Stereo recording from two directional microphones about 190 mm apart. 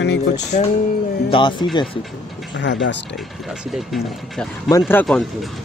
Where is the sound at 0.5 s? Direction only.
45° left (ahead or behind).